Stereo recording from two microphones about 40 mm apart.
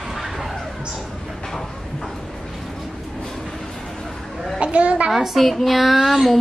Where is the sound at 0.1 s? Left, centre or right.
Centre.